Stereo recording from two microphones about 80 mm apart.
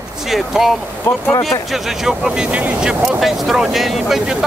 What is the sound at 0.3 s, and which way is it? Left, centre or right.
Speech, centre.